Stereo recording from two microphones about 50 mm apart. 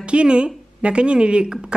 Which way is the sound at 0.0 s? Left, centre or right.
Right.